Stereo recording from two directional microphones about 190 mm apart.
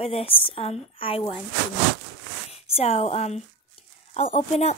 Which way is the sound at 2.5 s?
30° left (ahead or behind).